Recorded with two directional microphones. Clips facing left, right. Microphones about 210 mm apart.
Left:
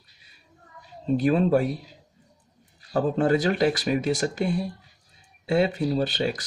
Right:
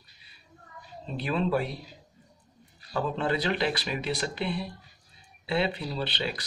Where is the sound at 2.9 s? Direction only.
50° left (ahead or behind).